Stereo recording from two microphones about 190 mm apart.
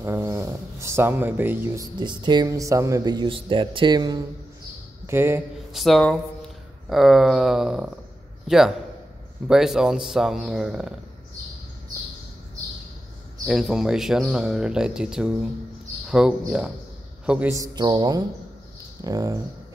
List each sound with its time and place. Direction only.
0.0 s a sound: 15° right (ahead or behind)
2.0 s speech: 25° right (ahead or behind)
5.0 s speech: 10° right (ahead or behind)
5.7 s speech: centre (ahead or behind)
13.5 s speech: centre (ahead or behind); by 19.3 s 20° right (ahead or behind)